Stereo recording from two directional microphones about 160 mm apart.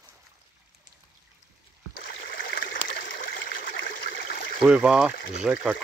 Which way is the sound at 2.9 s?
80° left.